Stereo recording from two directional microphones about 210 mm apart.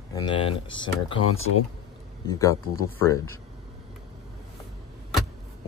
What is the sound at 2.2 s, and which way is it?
Speech, 15° left (ahead or behind).